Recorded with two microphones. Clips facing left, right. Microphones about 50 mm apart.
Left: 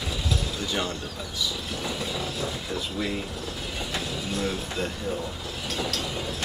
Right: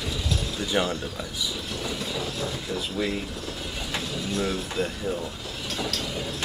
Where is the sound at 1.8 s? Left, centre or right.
Centre.